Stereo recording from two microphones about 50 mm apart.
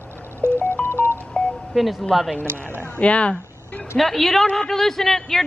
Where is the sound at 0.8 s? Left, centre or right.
Left.